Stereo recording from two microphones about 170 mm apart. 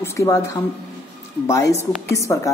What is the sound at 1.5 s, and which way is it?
Speech, 20° left (ahead or behind).